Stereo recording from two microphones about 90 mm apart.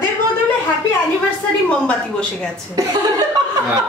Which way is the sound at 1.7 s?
10° left (ahead or behind).